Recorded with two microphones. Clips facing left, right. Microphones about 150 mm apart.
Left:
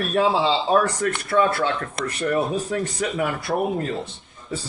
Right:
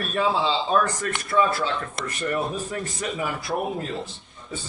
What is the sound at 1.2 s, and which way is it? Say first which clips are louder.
Speech: left 2 dB; 65° left (ahead or behind).